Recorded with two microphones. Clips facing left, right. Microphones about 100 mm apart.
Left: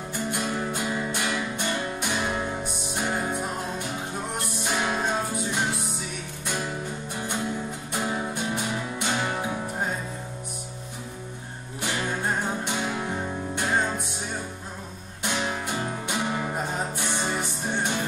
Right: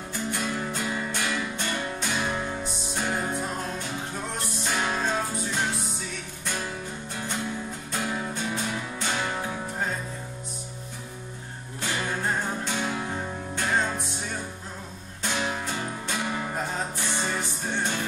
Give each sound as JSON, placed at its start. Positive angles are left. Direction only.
{"t": 0.3, "sound": "music", "side_deg": 20}
{"t": 7.9, "sound": "music", "side_deg": 20}
{"t": 11.8, "sound": "music", "side_deg": 15}
{"t": 15.2, "sound": "music", "side_deg": 15}